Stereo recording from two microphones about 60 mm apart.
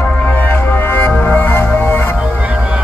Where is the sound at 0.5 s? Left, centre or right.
Left.